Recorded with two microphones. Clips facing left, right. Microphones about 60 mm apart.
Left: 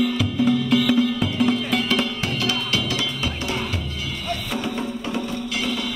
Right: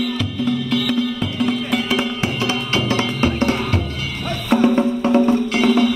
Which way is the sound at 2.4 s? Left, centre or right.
Right.